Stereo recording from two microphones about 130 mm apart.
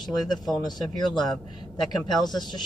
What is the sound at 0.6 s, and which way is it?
Speech, 30° left (ahead or behind).